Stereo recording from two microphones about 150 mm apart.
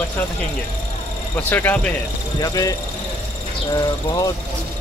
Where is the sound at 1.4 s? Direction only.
10° left (ahead or behind).